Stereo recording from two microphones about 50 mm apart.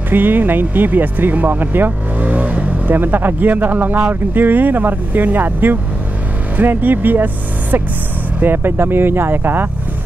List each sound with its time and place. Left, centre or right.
0.1 s speech: right
8.4 s speech: right